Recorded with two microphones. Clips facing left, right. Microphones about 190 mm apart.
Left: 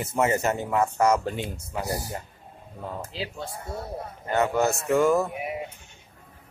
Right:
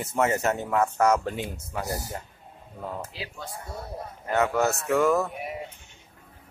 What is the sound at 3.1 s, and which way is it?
Speech, 30° left (ahead or behind).